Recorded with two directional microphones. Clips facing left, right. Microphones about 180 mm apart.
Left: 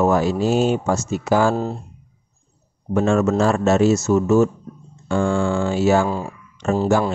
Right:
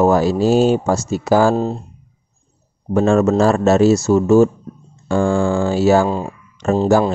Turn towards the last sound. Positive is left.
turn(degrees=-35)  # may be behind; listen again after turning